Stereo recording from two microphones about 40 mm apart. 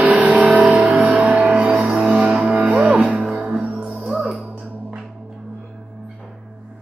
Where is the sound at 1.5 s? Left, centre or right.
Centre.